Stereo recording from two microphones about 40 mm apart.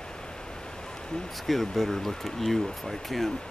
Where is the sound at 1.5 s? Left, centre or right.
Centre.